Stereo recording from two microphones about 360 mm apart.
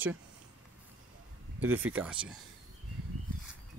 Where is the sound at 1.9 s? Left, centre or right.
Centre.